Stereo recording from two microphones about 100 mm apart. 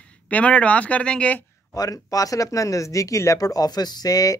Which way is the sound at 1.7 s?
35° left (ahead or behind).